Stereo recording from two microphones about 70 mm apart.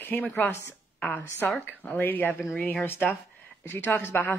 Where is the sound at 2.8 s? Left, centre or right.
Left.